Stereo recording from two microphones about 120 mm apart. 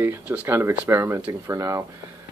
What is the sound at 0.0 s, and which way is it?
Speech, 20° right (ahead or behind).